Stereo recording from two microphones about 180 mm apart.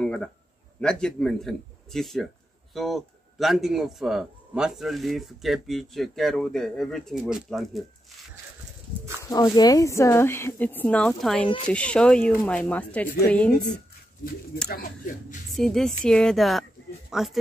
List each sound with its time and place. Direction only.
0.0 s a sound: 5° left (ahead or behind)
0.7 s a man's voice: 5° left (ahead or behind)
9.2 s a woman's voice: 20° left (ahead or behind)
14.7 s speech: 55° left (ahead or behind)
15.5 s a man's voice: centre (ahead or behind)